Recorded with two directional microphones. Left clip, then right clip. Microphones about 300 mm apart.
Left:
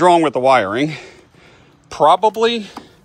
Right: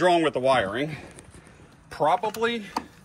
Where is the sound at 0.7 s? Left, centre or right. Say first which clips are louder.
Left 10 dB; left.